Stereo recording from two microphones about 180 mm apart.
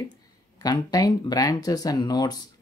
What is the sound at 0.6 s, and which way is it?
Speech, 20° left (ahead or behind).